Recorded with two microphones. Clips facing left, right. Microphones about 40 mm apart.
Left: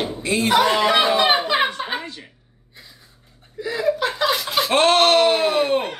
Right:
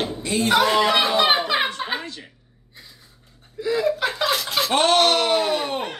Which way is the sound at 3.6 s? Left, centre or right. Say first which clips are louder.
Even; centre.